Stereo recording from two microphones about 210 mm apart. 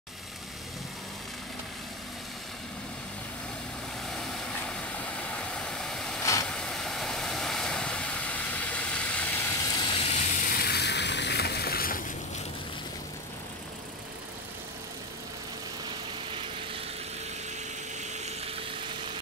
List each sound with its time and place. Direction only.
4.1 s vehicle: centre (ahead or behind); by 10.1 s 25° left (ahead or behind)
10.4 s vehicle: 45° left (ahead or behind)
18.0 s a sound: 35° right (ahead or behind)